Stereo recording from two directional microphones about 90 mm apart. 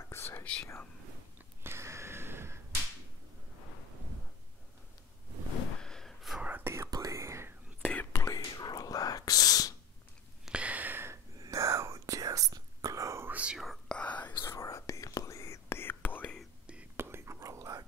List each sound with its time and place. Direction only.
0.1 s whispering: 30° left (ahead or behind)
1.6 s a sound: 30° right (ahead or behind)
5.8 s gasp: 5° left (ahead or behind)
6.4 s whispering: 20° right (ahead or behind)
6.7 s whispering: 35° right (ahead or behind)
7.8 s whispering: 20° left (ahead or behind)
8.2 s whispering: 35° left (ahead or behind)
10.4 s a sound: 15° right (ahead or behind)
11.3 s whispering: 40° right (ahead or behind)
13.3 s whispering: 15° right (ahead or behind)
13.8 s whispering: 15° left (ahead or behind)
14.4 s whispering: 35° left (ahead or behind)
16.9 s whispering: 30° right (ahead or behind)